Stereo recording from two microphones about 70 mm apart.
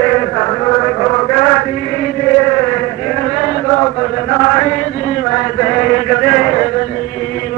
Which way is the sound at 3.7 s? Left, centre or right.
Left.